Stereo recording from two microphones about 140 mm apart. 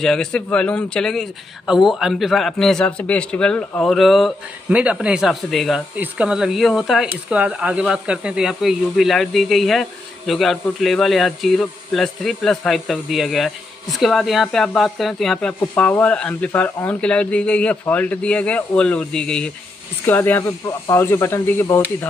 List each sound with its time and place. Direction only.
0.0 s a man's voice: 5° left (ahead or behind)